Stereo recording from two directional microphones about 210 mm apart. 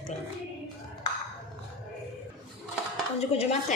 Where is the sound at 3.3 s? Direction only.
30° left (ahead or behind).